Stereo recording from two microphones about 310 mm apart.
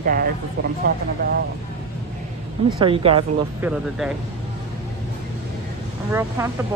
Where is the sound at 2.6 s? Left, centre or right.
Centre.